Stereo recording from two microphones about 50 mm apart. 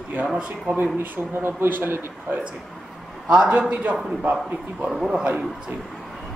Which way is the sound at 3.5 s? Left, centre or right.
Right.